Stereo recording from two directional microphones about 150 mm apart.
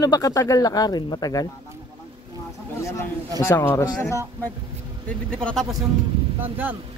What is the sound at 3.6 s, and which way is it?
Speech, 20° left (ahead or behind).